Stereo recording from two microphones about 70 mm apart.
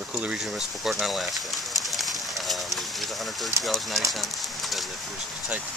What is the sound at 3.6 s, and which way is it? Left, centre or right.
Speech, centre.